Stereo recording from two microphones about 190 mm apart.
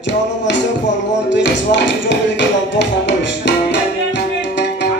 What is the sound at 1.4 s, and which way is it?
Music, 70° left (ahead or behind).